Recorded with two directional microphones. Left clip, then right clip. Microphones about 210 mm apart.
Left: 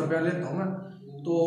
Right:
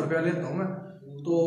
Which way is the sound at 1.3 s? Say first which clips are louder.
Right 1 dB; 5° right (ahead or behind).